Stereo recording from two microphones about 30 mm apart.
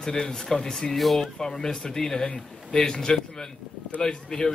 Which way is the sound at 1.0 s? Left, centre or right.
Centre.